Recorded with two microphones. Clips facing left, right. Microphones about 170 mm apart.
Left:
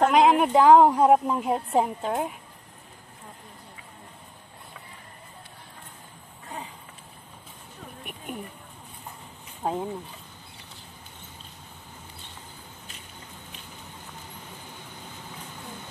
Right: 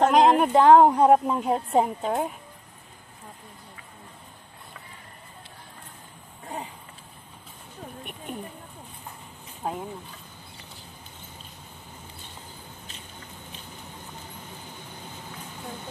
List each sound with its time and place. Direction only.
0.0 s a woman's voice: 5° left (ahead or behind)
8.0 s speech: 5° left (ahead or behind)
9.6 s speech: 25° left (ahead or behind)